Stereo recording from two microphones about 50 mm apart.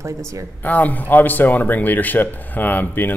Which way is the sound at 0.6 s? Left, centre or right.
Left.